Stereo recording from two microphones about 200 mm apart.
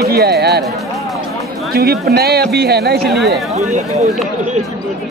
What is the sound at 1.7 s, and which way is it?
Speech, 50° right (ahead or behind).